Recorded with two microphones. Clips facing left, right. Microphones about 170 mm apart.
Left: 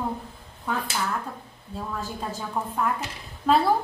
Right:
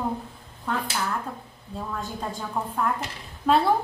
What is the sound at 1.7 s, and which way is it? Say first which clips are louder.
A woman's voice: even; centre (ahead or behind).